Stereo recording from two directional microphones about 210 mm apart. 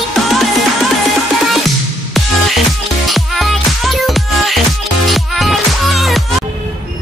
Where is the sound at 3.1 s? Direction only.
Centre (ahead or behind).